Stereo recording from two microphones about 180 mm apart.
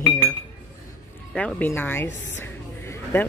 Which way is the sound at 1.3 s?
5° left (ahead or behind).